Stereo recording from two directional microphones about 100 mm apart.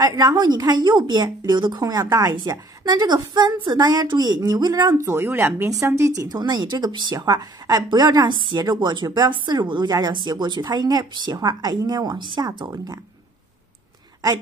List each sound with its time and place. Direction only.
0.0 s a woman's voice: 35° right (ahead or behind)
2.3 s a woman's voice: 45° right (ahead or behind)
4.9 s a woman's voice: 25° right (ahead or behind)